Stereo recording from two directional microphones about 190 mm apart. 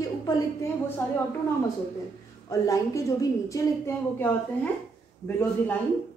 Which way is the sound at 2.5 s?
15° left (ahead or behind).